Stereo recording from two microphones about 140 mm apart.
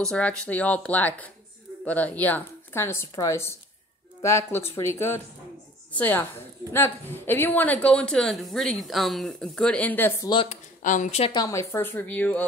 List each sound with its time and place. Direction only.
0.0 s a woman's voice: 5° left (ahead or behind)
10.8 s speech: 65° left (ahead or behind)
11.3 s a woman's voice: 20° left (ahead or behind)